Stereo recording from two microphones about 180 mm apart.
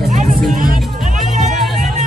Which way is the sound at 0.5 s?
50° right (ahead or behind).